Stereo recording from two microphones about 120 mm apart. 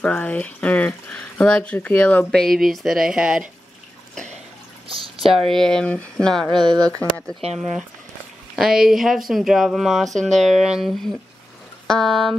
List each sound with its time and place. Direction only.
0.0 s speech: 10° left (ahead or behind); by 3.4 s 5° right (ahead or behind)
4.8 s drip: 50° right (ahead or behind)
5.5 s speech: 5° left (ahead or behind)
6.5 s speech: 40° right (ahead or behind)
7.0 s speech: 10° left (ahead or behind)
8.5 s speech: 5° right (ahead or behind)